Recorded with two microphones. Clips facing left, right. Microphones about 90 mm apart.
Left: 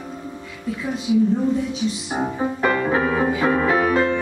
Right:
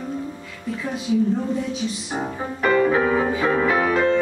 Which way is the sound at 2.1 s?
10° left (ahead or behind).